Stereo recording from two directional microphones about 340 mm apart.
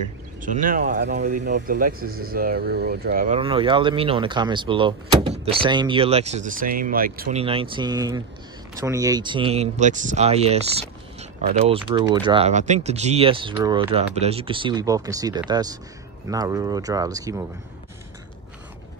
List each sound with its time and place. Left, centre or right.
0.4 s speech: right
11.7 s speech: centre